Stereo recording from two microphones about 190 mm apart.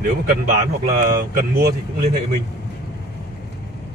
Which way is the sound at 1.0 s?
45° right (ahead or behind).